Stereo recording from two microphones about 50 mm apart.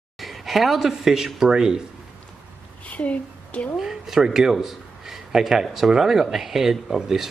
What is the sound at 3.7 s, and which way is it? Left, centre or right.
Speech, centre.